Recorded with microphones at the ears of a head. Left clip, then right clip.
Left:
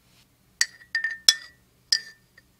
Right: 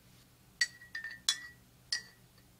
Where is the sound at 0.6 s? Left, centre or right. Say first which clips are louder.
Left 9 dB; left.